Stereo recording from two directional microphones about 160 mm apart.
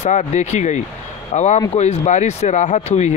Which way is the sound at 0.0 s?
50° left (ahead or behind).